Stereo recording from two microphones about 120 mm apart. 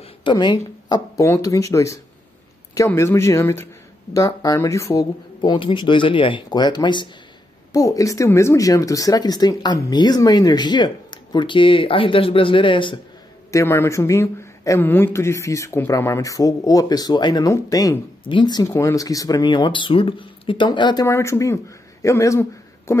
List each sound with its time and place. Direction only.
0.2 s speech: 40° left (ahead or behind)
5.4 s speech: 40° left (ahead or behind)
7.7 s speech: 30° left (ahead or behind); by 12.9 s 45° left (ahead or behind)
13.5 s speech: 20° left (ahead or behind)
18.2 s speech: 40° left (ahead or behind)
21.1 s speech: 25° left (ahead or behind)